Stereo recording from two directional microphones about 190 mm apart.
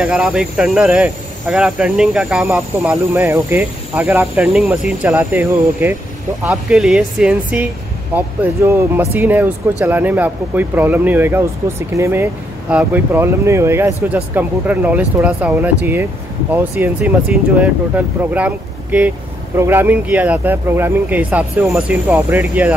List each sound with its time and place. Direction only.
0.0 s speech: 5° right (ahead or behind)